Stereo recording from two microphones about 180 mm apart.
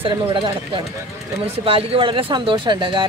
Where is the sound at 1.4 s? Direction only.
30° right (ahead or behind).